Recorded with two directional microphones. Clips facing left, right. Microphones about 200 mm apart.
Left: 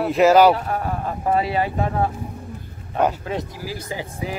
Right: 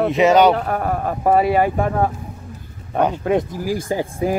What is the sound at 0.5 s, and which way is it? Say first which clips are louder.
Speech: right 4 dB; 55° right (ahead or behind).